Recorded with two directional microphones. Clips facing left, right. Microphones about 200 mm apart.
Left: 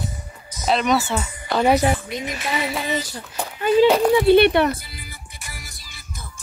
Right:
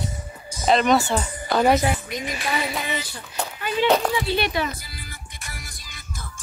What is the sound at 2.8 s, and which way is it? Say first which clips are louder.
Speech: left 4 dB; 40° left (ahead or behind).